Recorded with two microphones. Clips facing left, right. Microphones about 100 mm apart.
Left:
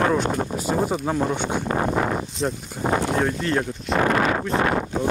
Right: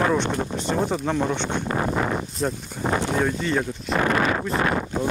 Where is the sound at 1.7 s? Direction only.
35° left (ahead or behind).